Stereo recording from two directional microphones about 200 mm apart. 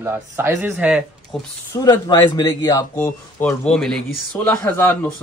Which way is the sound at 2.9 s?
5° left (ahead or behind).